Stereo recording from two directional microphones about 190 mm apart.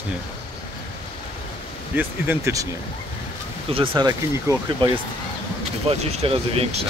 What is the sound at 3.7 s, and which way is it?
Speech, 30° right (ahead or behind).